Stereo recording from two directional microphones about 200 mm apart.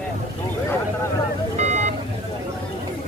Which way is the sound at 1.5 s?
35° right (ahead or behind).